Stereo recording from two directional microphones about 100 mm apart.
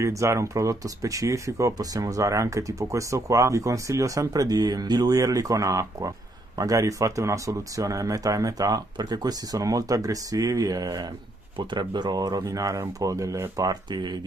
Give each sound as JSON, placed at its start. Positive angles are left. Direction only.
{"t": 0.0, "sound": "speech", "side_deg": -30}
{"t": 11.5, "sound": "speech", "side_deg": -50}